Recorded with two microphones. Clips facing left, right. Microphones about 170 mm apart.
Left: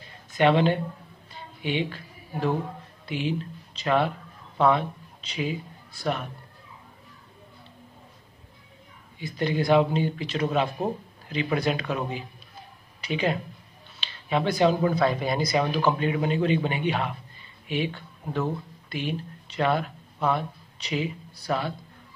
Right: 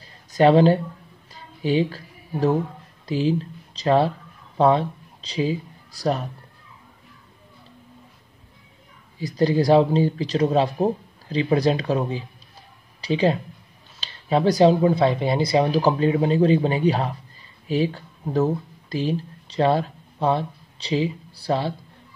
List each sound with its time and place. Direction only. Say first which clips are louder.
0.0 s a sound: right 5 dB; 35° right (ahead or behind)
1.6 s speech: right 7 dB; 35° right (ahead or behind)
9.2 s speech: right 7 dB; 35° right (ahead or behind)